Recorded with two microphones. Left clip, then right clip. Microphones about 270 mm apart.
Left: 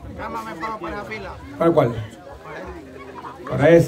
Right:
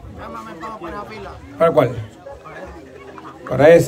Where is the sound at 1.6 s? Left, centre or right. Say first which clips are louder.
Right 3 dB; centre.